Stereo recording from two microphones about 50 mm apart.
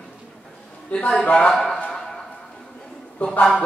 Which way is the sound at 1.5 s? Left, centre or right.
Centre.